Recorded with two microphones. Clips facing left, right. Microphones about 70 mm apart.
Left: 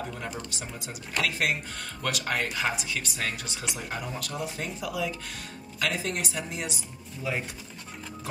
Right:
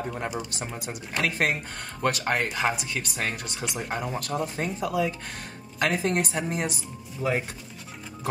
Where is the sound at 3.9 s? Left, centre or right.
Right.